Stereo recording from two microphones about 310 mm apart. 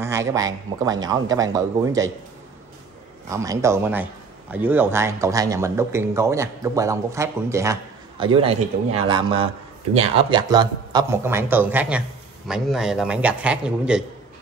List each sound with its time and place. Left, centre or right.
0.0 s a man's voice: centre
3.3 s a man's voice: centre